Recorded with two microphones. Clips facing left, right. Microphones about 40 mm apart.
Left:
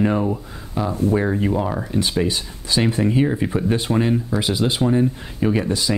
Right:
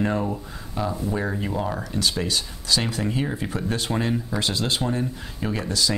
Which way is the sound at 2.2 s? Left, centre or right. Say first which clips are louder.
Left 5 dB; left.